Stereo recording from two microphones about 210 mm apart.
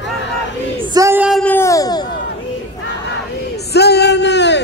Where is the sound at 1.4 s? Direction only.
10° left (ahead or behind).